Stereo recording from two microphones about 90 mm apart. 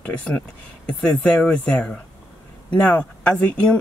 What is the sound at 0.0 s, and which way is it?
Speech, 15° left (ahead or behind).